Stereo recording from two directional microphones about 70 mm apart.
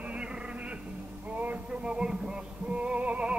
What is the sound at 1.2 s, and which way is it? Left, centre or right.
Music, right.